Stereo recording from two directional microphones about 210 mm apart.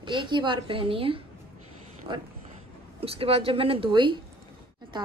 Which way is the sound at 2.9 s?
25° right (ahead or behind).